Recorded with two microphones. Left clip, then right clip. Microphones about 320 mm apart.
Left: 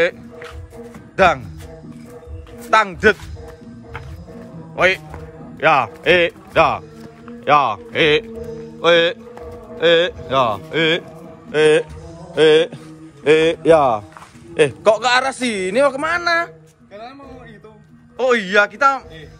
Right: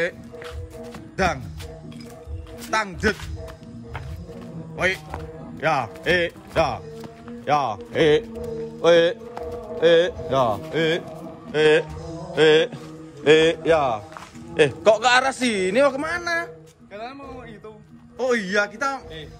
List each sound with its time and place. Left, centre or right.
1.1 s speech: centre
2.6 s speech: centre
4.7 s a man's voice: centre
8.8 s a sound: centre
10.3 s a man's voice: centre
18.1 s speech: centre